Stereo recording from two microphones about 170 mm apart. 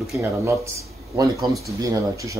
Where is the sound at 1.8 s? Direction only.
20° right (ahead or behind).